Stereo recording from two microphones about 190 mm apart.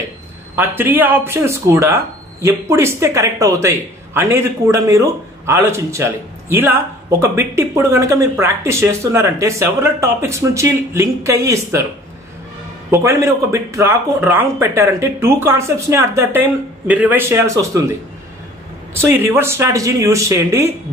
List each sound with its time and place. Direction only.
0.6 s a man's voice: 10° right (ahead or behind)
12.9 s a man's voice: 15° right (ahead or behind)
18.9 s a man's voice: 10° right (ahead or behind)